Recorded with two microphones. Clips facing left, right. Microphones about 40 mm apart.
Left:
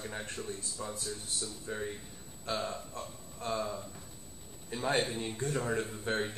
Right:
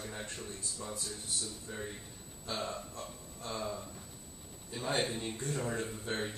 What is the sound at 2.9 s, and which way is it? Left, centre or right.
Speech, left.